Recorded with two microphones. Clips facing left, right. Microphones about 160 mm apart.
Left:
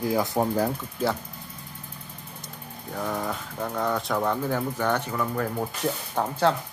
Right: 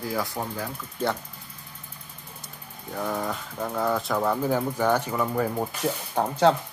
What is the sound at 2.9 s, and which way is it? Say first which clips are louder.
Speech: right 1 dB; centre (ahead or behind).